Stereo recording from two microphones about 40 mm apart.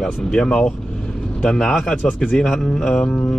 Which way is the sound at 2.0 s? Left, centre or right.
Left.